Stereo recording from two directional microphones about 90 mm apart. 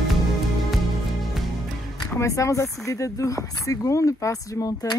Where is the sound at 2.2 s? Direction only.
35° left (ahead or behind).